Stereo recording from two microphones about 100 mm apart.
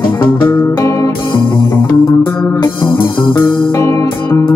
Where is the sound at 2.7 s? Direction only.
55° left (ahead or behind).